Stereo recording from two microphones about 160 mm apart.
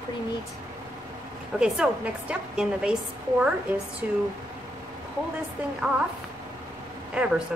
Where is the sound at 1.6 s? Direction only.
5° right (ahead or behind).